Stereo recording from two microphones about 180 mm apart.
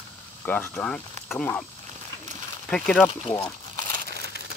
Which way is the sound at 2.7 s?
5° left (ahead or behind).